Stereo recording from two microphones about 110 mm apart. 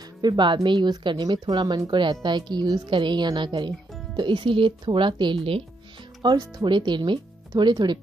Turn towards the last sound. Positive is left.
turn(degrees=-40)  # may be behind; listen again after turning